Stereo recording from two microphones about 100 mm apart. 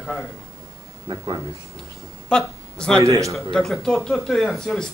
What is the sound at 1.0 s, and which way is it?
Speech, 45° right (ahead or behind).